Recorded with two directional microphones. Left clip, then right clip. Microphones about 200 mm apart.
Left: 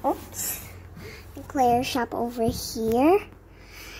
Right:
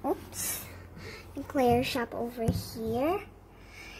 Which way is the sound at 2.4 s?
30° left (ahead or behind).